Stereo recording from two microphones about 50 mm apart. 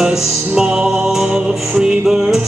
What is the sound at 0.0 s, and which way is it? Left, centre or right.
Music, centre.